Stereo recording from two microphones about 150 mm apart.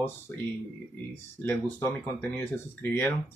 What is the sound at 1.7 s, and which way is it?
Speech, 15° left (ahead or behind).